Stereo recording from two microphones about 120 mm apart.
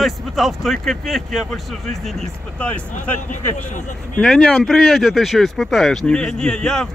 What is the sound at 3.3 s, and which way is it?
Speech, 90° left.